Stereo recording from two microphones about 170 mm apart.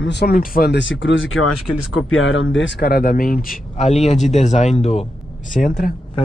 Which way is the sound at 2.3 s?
90° left.